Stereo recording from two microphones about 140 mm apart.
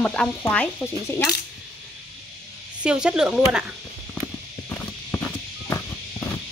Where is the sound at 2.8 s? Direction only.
5° right (ahead or behind).